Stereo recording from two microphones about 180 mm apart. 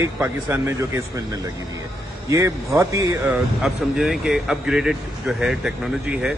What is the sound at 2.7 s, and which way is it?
Speech, 15° right (ahead or behind).